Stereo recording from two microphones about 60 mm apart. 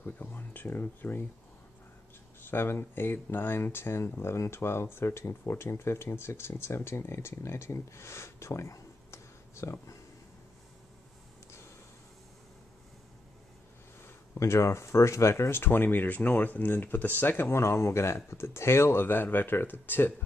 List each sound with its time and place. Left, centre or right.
0.0 s speech: left
2.5 s speech: left
14.0 s speech: left